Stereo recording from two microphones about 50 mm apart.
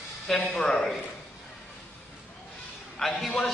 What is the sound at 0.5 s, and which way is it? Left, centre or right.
Speech, left.